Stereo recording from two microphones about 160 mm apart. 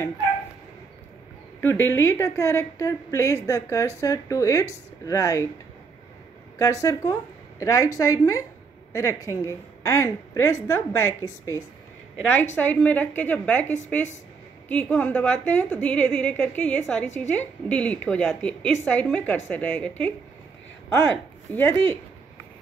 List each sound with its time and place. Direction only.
1.6 s a woman's voice: 15° left (ahead or behind)
6.6 s a woman's voice: 20° left (ahead or behind)
21.1 s speech: 15° left (ahead or behind)